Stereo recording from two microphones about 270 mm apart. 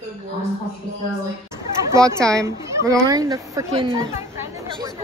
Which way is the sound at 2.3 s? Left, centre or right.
Centre.